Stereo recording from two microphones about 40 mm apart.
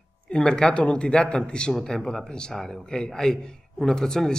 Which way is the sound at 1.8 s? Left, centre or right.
Centre.